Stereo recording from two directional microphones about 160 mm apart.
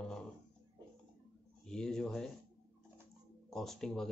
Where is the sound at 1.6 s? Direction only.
5° left (ahead or behind).